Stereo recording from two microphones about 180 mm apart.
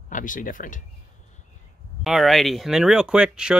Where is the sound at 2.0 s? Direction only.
Centre (ahead or behind).